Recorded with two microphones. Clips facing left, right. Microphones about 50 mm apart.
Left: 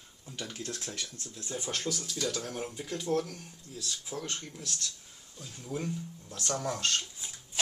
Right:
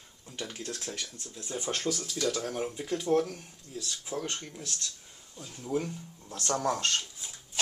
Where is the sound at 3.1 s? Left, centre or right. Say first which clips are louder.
Right 4 dB; right.